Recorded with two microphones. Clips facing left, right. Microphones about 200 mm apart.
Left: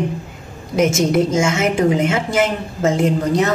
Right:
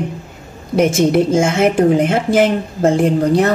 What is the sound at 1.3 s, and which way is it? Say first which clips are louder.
Speech: right 4 dB; 55° right (ahead or behind).